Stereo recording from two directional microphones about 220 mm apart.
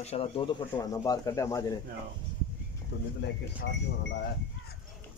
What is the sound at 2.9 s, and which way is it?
Speech, 50° left (ahead or behind).